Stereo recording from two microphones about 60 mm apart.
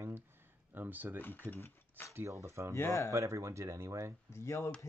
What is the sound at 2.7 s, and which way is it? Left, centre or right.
Speech, left.